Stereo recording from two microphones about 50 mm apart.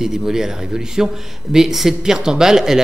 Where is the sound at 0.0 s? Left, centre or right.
Centre.